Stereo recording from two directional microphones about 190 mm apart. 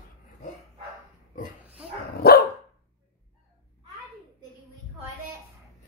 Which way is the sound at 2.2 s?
55° left (ahead or behind).